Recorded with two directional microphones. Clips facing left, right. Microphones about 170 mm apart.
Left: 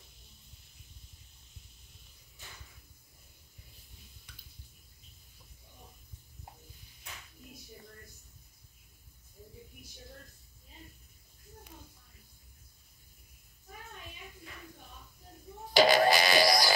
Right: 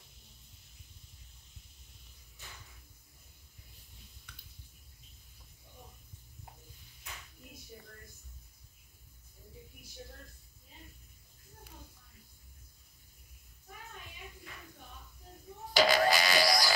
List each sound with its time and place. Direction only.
15.8 s music: 20° left (ahead or behind)